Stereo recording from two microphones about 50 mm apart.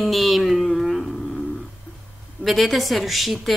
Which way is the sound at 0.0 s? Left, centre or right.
Centre.